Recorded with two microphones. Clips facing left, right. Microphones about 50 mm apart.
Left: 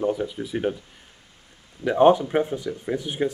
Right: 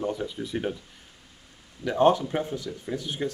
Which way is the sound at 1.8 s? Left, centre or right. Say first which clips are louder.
Left 4 dB; left.